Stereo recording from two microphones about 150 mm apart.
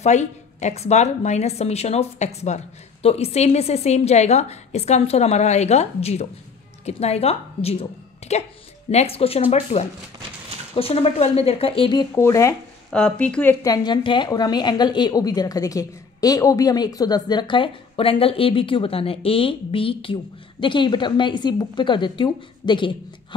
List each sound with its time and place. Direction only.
0.0 s a woman's voice: 50° left (ahead or behind); by 12.1 s 35° left (ahead or behind)
12.2 s a woman's voice: 20° left (ahead or behind)
12.9 s speech: 5° left (ahead or behind)
13.7 s a woman's voice: 30° left (ahead or behind)